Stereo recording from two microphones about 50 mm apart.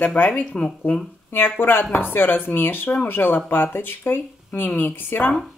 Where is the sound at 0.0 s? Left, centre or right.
Left.